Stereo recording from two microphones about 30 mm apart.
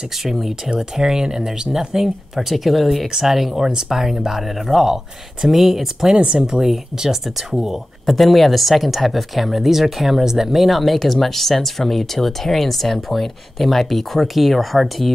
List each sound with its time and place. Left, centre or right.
0.2 s speech: centre
0.7 s speech: centre
4.8 s speech: centre
5.5 s speech: centre
6.1 s speech: right
6.7 s speech: centre
10.8 s speech: centre